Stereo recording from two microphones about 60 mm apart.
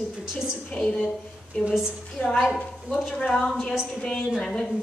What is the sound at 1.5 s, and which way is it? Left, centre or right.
Speech, left.